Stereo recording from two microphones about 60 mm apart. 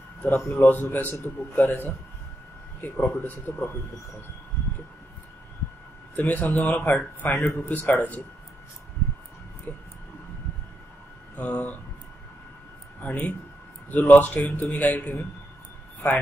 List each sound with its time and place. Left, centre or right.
0.3 s a man's voice: left
6.1 s a man's voice: left
9.7 s a sound: left
11.3 s a man's voice: left
13.0 s a man's voice: left